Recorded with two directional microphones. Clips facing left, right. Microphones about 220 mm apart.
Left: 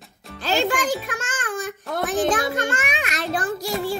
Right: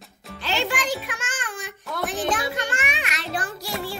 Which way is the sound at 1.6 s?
50° left (ahead or behind).